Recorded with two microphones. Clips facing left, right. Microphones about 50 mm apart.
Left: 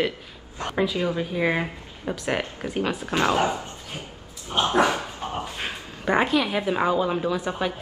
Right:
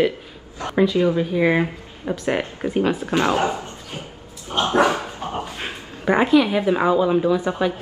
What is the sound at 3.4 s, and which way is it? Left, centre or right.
Speech, right.